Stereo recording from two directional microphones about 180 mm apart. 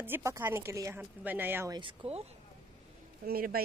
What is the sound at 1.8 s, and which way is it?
Speech, 30° right (ahead or behind).